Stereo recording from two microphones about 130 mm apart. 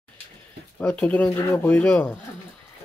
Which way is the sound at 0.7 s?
10° left (ahead or behind).